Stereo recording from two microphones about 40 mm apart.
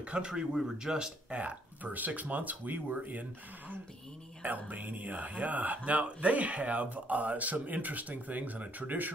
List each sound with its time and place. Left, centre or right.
0.0 s speech: right
0.6 s speech: centre
1.3 s speech: right